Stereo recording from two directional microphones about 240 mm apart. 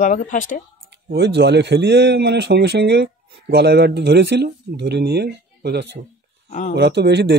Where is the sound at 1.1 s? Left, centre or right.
Right.